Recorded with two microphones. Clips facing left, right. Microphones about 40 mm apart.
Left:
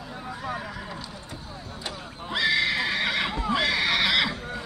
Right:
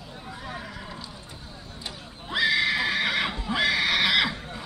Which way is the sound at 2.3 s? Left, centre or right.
Centre.